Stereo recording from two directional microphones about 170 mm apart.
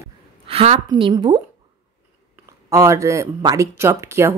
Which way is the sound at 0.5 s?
35° right (ahead or behind).